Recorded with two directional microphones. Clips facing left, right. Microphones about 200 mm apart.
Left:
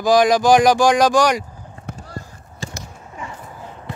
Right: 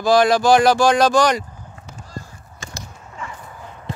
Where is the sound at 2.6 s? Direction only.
35° left (ahead or behind).